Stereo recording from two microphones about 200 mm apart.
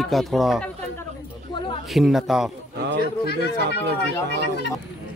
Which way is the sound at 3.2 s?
55° left (ahead or behind).